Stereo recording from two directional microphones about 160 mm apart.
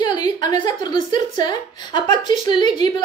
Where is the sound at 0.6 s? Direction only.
25° left (ahead or behind).